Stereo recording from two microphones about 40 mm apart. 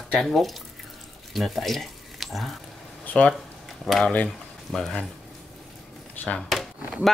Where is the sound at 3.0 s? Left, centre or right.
Left.